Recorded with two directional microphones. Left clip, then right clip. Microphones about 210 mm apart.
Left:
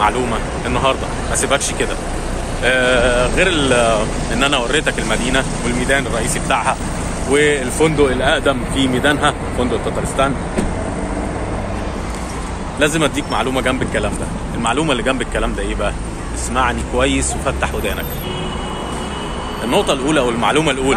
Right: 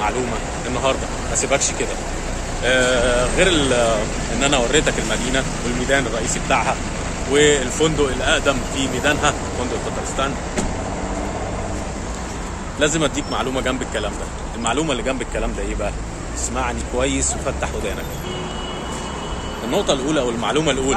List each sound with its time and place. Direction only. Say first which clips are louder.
0.7 s speech: left 4 dB; centre (ahead or behind)
7.3 s speech: left 1 dB; 10° left (ahead or behind)
8.0 s speech: left 4 dB; 35° left (ahead or behind)
12.7 s speech: left 3 dB; 5° right (ahead or behind)
19.7 s speech: left 4 dB; centre (ahead or behind)